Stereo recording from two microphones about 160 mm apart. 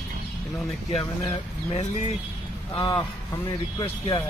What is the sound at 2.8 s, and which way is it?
Speech, 25° left (ahead or behind).